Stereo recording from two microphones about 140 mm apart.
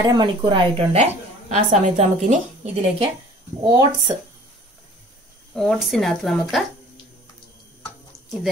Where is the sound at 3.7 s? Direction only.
25° right (ahead or behind).